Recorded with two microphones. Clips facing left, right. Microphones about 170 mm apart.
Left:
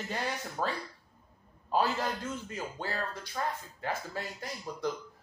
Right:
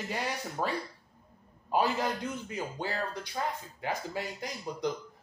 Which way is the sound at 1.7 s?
15° right (ahead or behind).